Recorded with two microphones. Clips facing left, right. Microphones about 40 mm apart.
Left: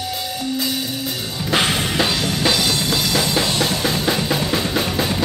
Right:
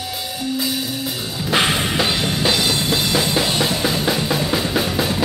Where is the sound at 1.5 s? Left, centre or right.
Centre.